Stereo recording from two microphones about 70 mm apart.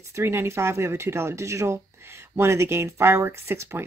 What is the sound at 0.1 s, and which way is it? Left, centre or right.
Speech, right.